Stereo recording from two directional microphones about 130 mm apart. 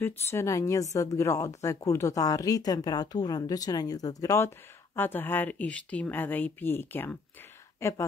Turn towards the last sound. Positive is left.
turn(degrees=20)  # may be behind; listen again after turning